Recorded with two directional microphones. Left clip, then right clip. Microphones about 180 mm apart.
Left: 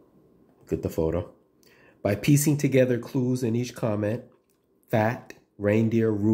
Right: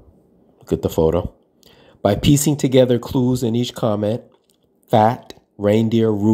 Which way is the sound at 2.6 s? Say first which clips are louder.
Right 8 dB; 25° right (ahead or behind).